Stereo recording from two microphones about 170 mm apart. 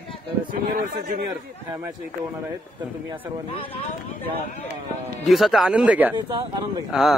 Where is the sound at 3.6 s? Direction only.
35° left (ahead or behind).